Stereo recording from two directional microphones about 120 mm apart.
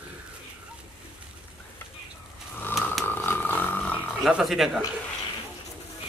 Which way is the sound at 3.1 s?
15° left (ahead or behind).